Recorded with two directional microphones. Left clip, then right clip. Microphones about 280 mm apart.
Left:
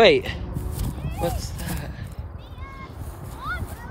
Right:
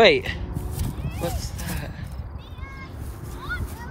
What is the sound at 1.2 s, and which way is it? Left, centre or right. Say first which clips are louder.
Dog: left 3 dB; centre.